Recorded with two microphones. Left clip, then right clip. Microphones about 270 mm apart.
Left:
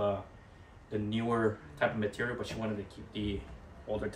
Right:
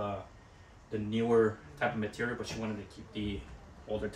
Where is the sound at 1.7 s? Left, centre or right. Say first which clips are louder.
Left 2 dB; centre.